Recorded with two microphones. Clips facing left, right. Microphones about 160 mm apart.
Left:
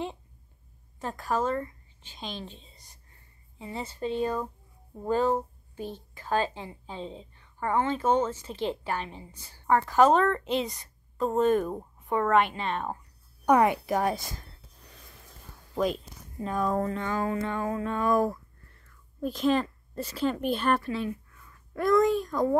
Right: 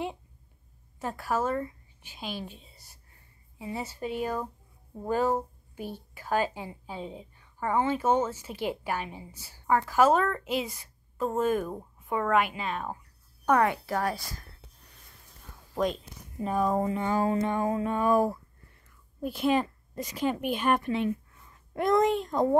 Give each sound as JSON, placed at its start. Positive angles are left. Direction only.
{"t": 0.9, "sound": "a woman's voice", "side_deg": -10}
{"t": 13.5, "sound": "a woman's voice", "side_deg": 15}
{"t": 15.7, "sound": "speech", "side_deg": 5}
{"t": 16.7, "sound": "speech", "side_deg": -15}
{"t": 17.2, "sound": "music", "side_deg": -25}
{"t": 19.2, "sound": "a woman's voice", "side_deg": -10}